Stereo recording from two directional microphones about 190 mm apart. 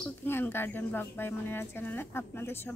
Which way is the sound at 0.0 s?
10° left (ahead or behind).